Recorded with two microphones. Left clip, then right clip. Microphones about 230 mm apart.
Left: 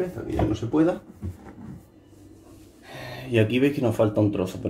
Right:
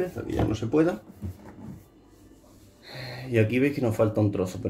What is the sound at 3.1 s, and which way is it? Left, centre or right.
Speech, centre.